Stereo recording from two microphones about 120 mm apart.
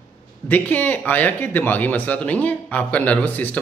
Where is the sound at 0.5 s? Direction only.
15° left (ahead or behind).